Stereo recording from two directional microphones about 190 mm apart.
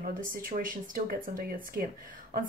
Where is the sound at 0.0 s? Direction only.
50° right (ahead or behind).